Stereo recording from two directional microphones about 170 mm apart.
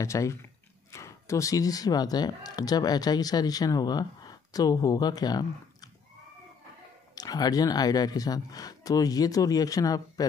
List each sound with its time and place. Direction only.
0.0 s speech: 20° left (ahead or behind)
7.2 s speech: 25° left (ahead or behind)